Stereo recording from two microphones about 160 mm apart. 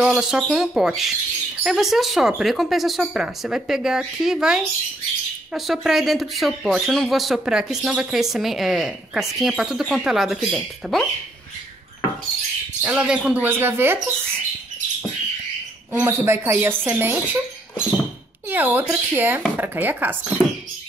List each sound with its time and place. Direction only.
0.0 s speech: 5° right (ahead or behind)
12.8 s speech: 5° right (ahead or behind)
15.9 s speech: 15° right (ahead or behind)
18.5 s speech: 10° right (ahead or behind)